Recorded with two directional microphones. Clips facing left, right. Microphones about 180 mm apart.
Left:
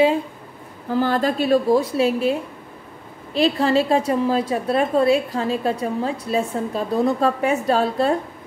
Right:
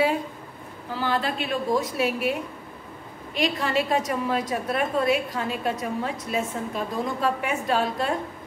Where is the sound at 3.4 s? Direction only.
35° left (ahead or behind).